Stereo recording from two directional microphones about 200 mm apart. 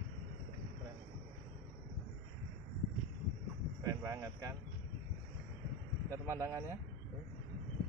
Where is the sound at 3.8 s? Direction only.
15° right (ahead or behind).